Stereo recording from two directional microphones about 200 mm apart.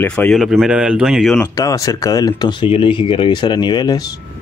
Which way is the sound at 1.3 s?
15° left (ahead or behind).